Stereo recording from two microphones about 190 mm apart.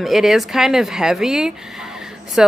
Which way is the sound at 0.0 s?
Centre (ahead or behind).